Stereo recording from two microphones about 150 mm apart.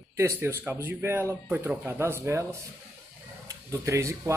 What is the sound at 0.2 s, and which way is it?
Speech, 15° right (ahead or behind).